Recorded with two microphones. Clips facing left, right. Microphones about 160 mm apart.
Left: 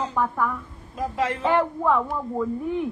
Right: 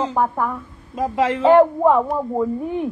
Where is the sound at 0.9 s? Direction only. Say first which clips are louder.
Right 6 dB; 90° right.